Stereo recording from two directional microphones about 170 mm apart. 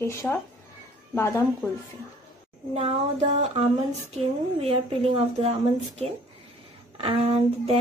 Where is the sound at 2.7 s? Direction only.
40° right (ahead or behind).